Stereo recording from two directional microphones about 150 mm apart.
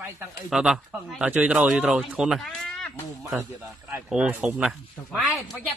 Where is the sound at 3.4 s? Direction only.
15° right (ahead or behind).